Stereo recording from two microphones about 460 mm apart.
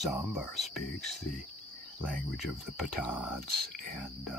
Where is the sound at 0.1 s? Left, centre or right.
Centre.